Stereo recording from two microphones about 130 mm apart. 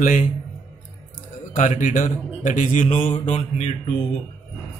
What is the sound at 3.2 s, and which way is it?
Mantra, 65° left (ahead or behind).